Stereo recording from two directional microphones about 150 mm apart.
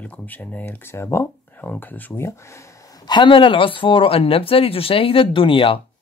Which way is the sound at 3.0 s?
30° left (ahead or behind).